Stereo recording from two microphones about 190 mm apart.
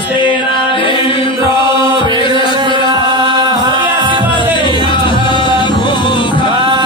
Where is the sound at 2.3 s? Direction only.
25° right (ahead or behind).